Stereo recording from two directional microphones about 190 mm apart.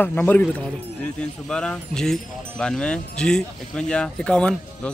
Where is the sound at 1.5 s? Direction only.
5° left (ahead or behind).